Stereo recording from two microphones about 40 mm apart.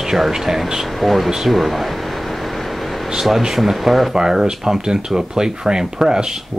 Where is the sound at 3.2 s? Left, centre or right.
Centre.